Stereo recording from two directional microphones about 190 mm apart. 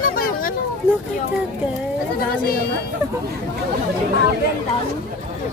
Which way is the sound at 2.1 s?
50° left (ahead or behind).